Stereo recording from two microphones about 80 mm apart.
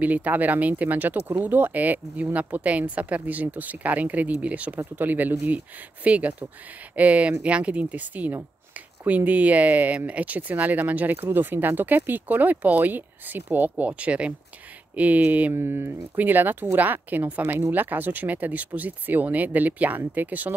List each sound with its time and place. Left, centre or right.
0.0 s a woman's voice: centre